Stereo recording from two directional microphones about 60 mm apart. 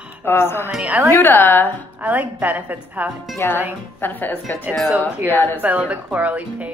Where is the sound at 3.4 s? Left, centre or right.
Left.